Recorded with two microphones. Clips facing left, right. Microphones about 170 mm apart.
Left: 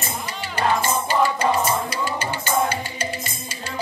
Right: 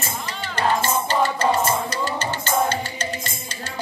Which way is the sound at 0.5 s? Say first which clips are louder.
Even; 10° left (ahead or behind).